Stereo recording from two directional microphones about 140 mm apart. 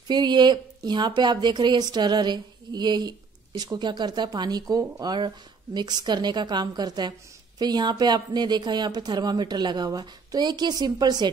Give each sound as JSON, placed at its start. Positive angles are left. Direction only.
{"t": 0.1, "sound": "speech", "side_deg": -30}